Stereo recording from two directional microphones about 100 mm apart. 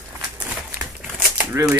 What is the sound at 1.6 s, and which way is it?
Typewriter, 25° right (ahead or behind).